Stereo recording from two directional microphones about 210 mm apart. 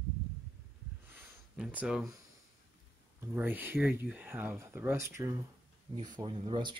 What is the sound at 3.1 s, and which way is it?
Speech, 10° right (ahead or behind).